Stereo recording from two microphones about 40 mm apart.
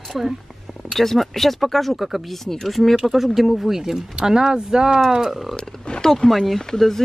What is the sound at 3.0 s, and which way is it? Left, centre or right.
Speech, centre.